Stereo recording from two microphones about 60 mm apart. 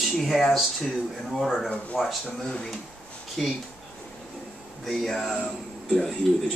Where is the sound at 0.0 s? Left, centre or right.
Centre.